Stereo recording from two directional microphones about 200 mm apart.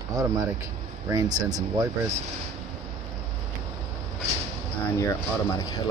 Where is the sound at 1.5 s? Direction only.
20° right (ahead or behind).